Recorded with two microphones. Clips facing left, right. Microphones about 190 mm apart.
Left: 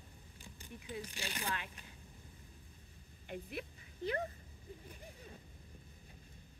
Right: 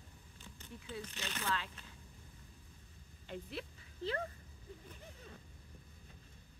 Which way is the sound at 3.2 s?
15° left (ahead or behind).